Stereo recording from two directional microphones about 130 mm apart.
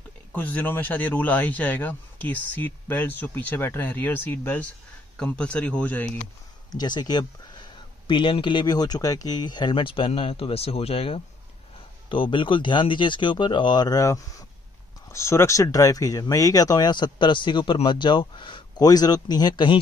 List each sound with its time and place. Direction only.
0.3 s speech: 10° left (ahead or behind)
6.7 s speech: 30° left (ahead or behind)